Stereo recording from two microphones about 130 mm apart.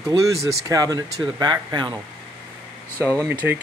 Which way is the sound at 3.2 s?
15° right (ahead or behind).